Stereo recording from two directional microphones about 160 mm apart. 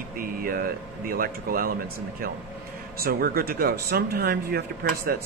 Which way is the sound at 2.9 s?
70° right (ahead or behind).